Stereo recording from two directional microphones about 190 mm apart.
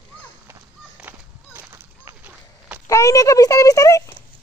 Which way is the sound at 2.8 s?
15° left (ahead or behind).